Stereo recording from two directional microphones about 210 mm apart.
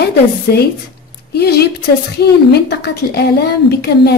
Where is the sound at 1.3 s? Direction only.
50° left (ahead or behind).